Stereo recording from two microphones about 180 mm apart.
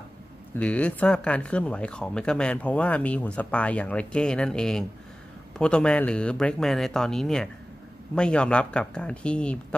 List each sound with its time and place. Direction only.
0.6 s speech: 5° left (ahead or behind)